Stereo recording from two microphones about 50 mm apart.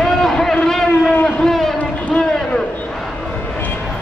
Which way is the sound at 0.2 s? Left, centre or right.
Centre.